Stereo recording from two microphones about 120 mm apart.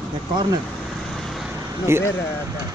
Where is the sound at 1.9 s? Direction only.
20° right (ahead or behind).